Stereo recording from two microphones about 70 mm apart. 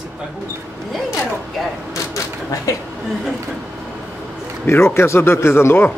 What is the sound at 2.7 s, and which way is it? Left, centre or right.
Speech, left.